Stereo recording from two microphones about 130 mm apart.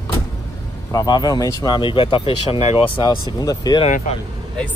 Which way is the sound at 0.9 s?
30° left (ahead or behind).